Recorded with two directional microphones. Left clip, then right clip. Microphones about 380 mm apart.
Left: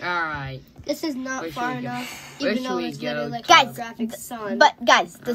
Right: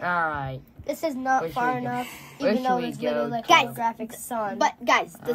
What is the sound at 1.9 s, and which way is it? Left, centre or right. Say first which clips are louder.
Speech: right 1 dB; left.